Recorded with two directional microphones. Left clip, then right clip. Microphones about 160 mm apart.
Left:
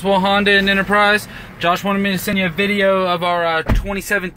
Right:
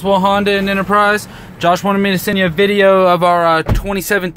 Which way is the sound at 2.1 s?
60° right (ahead or behind).